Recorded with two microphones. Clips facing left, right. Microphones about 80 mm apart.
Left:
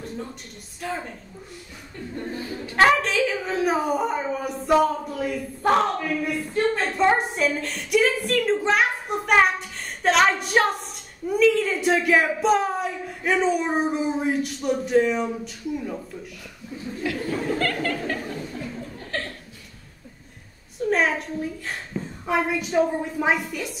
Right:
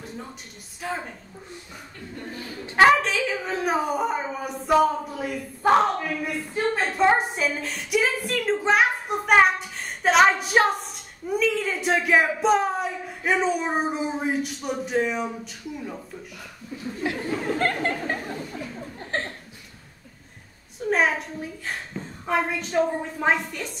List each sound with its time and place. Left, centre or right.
0.7 s a woman's voice: centre
2.8 s a woman's voice: centre
17.0 s speech: right
17.8 s chuckle: right
20.9 s a woman's voice: centre